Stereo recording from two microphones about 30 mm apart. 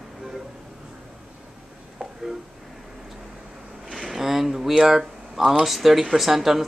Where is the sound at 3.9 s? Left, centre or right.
Centre.